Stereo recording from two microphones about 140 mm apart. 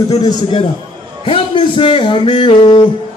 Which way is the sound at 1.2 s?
40° left (ahead or behind).